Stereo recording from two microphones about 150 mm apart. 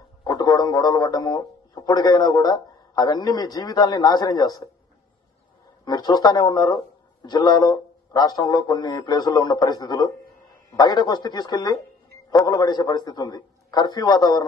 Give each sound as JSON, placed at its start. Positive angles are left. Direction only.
{"t": 0.2, "sound": "a man's voice", "side_deg": 25}
{"t": 5.9, "sound": "a man's voice", "side_deg": 25}